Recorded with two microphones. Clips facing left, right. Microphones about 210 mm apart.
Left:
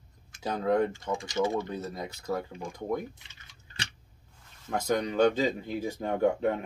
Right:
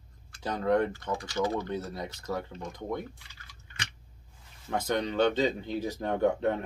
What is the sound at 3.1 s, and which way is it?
Drip, 20° left (ahead or behind).